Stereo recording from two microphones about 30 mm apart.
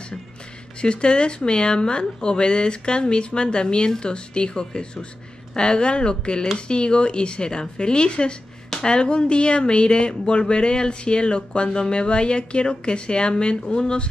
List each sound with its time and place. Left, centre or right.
0.7 s speech: left